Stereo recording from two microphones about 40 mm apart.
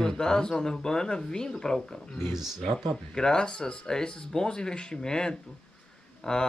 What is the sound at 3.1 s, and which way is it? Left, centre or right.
Speech, centre.